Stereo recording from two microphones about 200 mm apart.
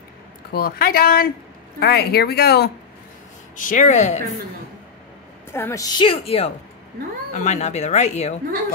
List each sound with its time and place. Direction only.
0.5 s speech: 50° left (ahead or behind)
3.5 s speech: 40° left (ahead or behind)
5.5 s a woman's voice: 15° left (ahead or behind); by 8.4 s 35° left (ahead or behind)